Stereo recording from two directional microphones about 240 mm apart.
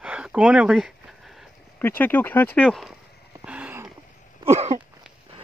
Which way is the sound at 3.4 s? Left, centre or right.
Centre.